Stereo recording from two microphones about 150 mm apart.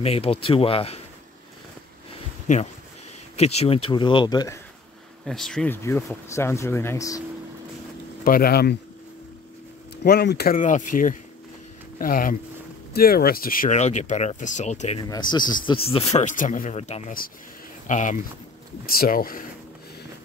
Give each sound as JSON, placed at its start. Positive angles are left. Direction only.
{"t": 0.0, "sound": "speech", "side_deg": 40}
{"t": 2.4, "sound": "speech", "side_deg": 55}
{"t": 3.3, "sound": "speech", "side_deg": 45}
{"t": 5.2, "sound": "speech", "side_deg": 5}
{"t": 5.7, "sound": "speech", "side_deg": 15}
{"t": 8.2, "sound": "speech", "side_deg": 80}
{"t": 10.0, "sound": "speech", "side_deg": 90}
{"t": 12.9, "sound": "speech", "side_deg": 85}
{"t": 13.7, "sound": "speech", "side_deg": 50}
{"t": 15.0, "sound": "speech", "side_deg": 30}
{"t": 18.9, "sound": "speech", "side_deg": 70}